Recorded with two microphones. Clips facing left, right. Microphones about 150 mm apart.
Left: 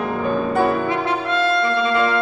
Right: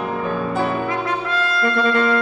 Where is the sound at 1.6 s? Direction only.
55° right (ahead or behind).